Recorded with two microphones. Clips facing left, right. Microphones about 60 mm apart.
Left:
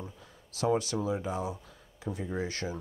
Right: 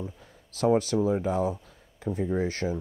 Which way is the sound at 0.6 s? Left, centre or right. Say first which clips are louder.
Right 6 dB; right.